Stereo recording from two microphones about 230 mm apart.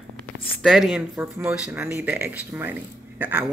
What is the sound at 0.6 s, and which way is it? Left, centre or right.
Speech, centre.